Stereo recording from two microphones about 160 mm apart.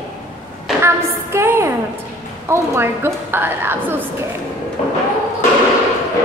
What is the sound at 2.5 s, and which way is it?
A woman's voice, 15° right (ahead or behind).